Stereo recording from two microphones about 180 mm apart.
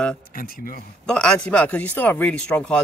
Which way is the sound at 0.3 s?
55° left (ahead or behind).